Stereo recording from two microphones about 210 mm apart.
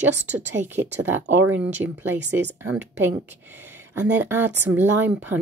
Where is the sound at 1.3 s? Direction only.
10° right (ahead or behind).